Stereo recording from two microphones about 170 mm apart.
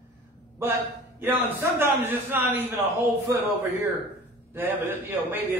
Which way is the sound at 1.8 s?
10° right (ahead or behind).